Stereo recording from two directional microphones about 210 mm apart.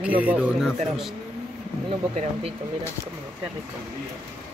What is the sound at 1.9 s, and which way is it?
Speech, 30° right (ahead or behind).